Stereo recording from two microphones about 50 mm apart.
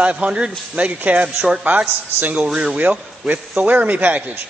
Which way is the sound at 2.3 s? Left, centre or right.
Centre.